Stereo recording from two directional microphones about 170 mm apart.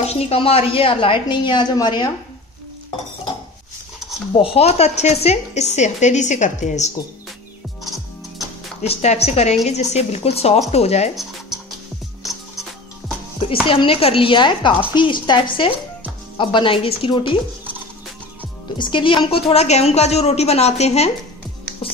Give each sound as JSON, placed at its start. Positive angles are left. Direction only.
{"t": 0.0, "sound": "speech", "side_deg": 35}
{"t": 4.3, "sound": "speech", "side_deg": 35}
{"t": 8.8, "sound": "speech", "side_deg": 40}
{"t": 12.2, "sound": "music", "side_deg": 0}
{"t": 13.7, "sound": "speech", "side_deg": 30}
{"t": 18.8, "sound": "speech", "side_deg": 30}